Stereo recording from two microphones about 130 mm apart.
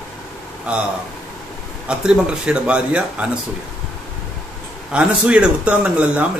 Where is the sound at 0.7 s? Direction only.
10° right (ahead or behind).